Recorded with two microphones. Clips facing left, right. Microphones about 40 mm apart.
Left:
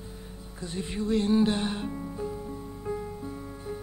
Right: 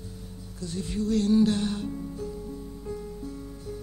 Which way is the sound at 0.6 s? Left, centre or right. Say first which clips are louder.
Right 1 dB; left.